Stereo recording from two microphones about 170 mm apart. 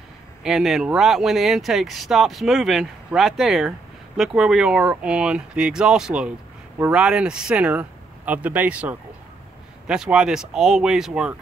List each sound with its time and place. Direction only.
0.4 s speech: centre (ahead or behind)